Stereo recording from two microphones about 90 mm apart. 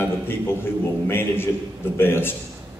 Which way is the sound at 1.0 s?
25° left (ahead or behind).